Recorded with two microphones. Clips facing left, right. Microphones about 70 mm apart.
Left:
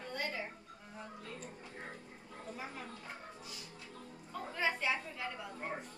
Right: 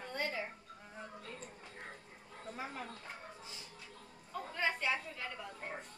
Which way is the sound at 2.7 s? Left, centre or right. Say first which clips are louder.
Right 1 dB; centre.